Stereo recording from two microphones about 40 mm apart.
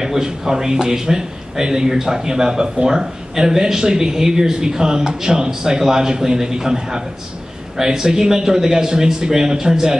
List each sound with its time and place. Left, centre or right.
0.0 s speech: centre